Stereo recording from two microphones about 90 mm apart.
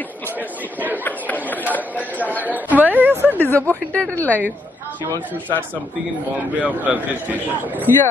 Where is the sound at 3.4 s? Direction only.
20° left (ahead or behind).